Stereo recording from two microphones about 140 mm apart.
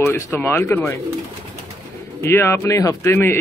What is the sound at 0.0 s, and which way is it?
Speech, 20° left (ahead or behind).